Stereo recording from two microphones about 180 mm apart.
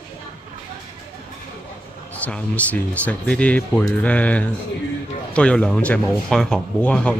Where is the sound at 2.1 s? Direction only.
10° left (ahead or behind).